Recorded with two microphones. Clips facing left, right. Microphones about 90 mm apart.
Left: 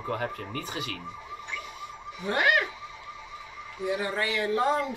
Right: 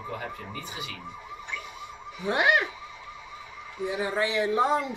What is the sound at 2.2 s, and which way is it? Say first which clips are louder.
Speech: right 1 dB; 15° right (ahead or behind).